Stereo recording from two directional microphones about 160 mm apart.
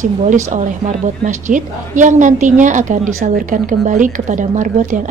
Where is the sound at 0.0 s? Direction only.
50° right (ahead or behind).